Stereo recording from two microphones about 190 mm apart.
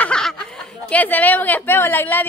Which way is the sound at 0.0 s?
5° left (ahead or behind).